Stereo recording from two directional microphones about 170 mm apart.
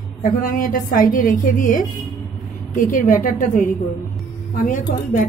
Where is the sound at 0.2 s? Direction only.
55° left (ahead or behind).